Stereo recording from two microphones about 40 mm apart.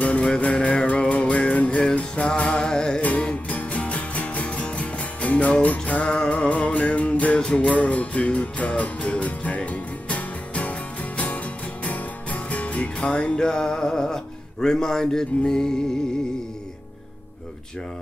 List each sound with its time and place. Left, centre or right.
0.4 s music: left
2.6 s music: centre
3.0 s music: left
6.0 s music: left
6.3 s music: left
7.3 s music: left